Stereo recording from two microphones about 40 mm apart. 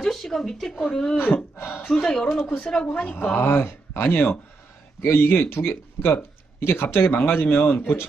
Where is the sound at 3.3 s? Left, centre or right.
Left.